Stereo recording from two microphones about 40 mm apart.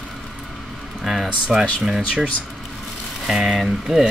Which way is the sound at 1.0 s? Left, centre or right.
Centre.